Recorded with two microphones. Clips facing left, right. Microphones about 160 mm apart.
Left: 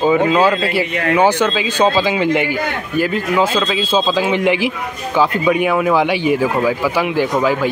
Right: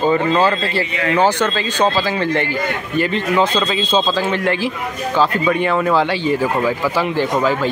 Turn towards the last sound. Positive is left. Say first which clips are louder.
# left 1 dB
turn(degrees=10)  # may be behind; listen again after turning